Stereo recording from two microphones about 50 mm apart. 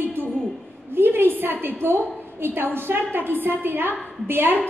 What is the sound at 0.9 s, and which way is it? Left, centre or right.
A woman's voice, right.